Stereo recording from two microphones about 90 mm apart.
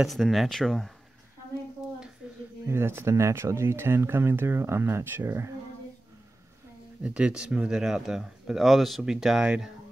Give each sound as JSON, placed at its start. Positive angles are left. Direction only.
{"t": 0.0, "sound": "speech", "side_deg": 0}
{"t": 2.2, "sound": "a sound", "side_deg": -15}
{"t": 2.6, "sound": "speech", "side_deg": -30}
{"t": 7.0, "sound": "speech", "side_deg": -10}